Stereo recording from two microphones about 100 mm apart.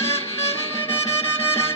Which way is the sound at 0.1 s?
90° left.